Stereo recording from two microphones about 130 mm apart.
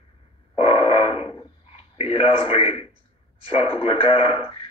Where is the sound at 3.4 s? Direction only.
45° left (ahead or behind).